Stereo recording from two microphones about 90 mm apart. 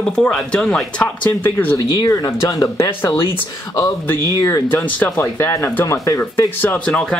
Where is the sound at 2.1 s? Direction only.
35° left (ahead or behind).